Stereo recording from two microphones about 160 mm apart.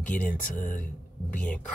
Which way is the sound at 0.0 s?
55° left (ahead or behind).